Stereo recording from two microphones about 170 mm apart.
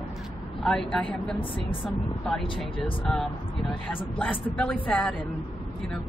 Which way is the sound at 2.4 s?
30° left (ahead or behind).